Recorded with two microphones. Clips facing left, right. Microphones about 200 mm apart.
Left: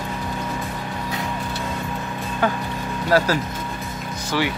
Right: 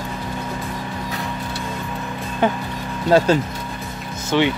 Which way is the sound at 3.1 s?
25° right (ahead or behind).